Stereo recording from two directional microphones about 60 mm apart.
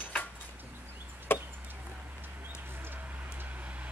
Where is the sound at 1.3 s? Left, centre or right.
Left.